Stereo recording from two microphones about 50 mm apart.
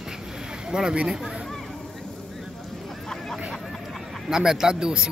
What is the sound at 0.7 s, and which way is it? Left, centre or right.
Speech, centre.